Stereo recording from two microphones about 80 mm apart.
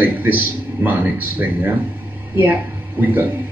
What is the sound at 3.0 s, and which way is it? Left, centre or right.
Speech, right.